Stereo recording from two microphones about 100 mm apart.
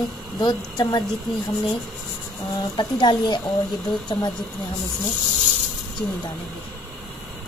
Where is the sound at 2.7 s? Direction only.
50° left (ahead or behind).